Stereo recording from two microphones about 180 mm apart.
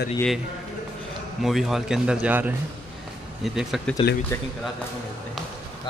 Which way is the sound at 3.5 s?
Centre (ahead or behind).